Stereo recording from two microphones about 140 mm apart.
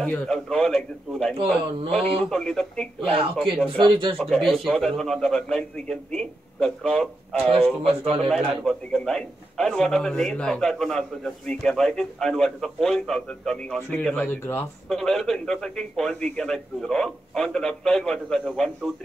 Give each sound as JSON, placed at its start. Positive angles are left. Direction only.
{"t": 0.0, "sound": "a man's voice", "side_deg": 5}
{"t": 1.3, "sound": "speech", "side_deg": -40}
{"t": 2.2, "sound": "a man's voice", "side_deg": 5}
{"t": 3.6, "sound": "speech", "side_deg": -35}
{"t": 4.5, "sound": "a man's voice", "side_deg": 0}
{"t": 14.9, "sound": "a man's voice", "side_deg": 0}